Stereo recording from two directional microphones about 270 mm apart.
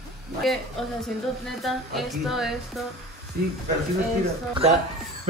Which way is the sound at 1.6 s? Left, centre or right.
Centre.